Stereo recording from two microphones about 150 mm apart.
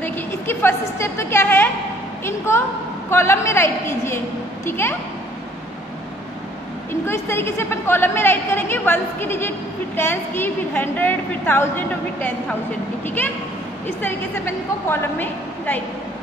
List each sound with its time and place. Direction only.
0.0 s a woman's voice: 15° left (ahead or behind)
6.9 s a woman's voice: 15° left (ahead or behind)